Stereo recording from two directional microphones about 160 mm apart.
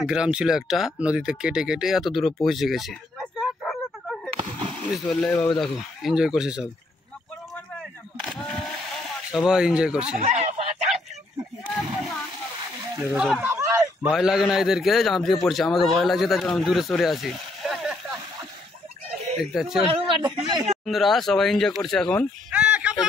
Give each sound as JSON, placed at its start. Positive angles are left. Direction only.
{"t": 0.0, "sound": "speech", "side_deg": -5}
{"t": 2.4, "sound": "a sound", "side_deg": 0}
{"t": 4.4, "sound": "a sound", "side_deg": -30}
{"t": 4.9, "sound": "speech", "side_deg": 0}
{"t": 8.3, "sound": "camera", "side_deg": 5}
{"t": 10.2, "sound": "speech", "side_deg": -45}
{"t": 11.8, "sound": "a sound", "side_deg": 0}
{"t": 14.1, "sound": "speech", "side_deg": -5}
{"t": 19.5, "sound": "speech", "side_deg": -5}
{"t": 19.9, "sound": "speech", "side_deg": -35}
{"t": 20.8, "sound": "speech", "side_deg": 0}
{"t": 22.5, "sound": "a sound", "side_deg": -10}